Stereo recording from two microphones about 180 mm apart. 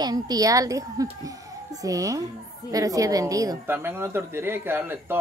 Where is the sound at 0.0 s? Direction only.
20° right (ahead or behind).